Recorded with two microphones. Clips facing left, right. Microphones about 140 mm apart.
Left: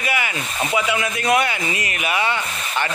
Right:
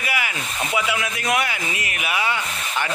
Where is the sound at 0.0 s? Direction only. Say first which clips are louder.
Left 3 dB; 5° right (ahead or behind).